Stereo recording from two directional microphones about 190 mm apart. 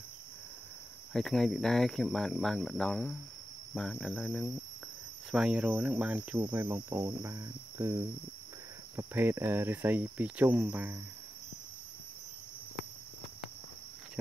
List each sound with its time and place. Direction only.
1.1 s speech: centre (ahead or behind)
5.3 s cricket: 5° right (ahead or behind)